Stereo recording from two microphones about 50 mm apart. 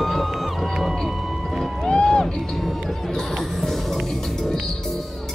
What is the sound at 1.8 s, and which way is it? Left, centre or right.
Music, centre.